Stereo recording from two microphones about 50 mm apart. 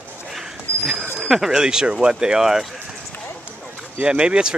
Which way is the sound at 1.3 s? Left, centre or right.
Centre.